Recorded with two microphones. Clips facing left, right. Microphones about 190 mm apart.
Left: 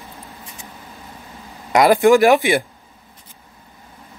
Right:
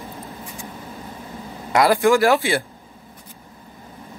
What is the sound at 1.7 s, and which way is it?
Speech, 20° left (ahead or behind).